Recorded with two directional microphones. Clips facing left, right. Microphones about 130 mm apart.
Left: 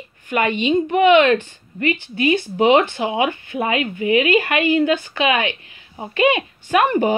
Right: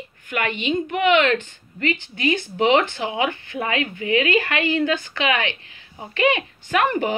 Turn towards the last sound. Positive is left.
turn(degrees=20)  # may be behind; listen again after turning